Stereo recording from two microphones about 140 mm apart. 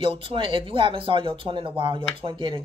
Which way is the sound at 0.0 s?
40° right (ahead or behind).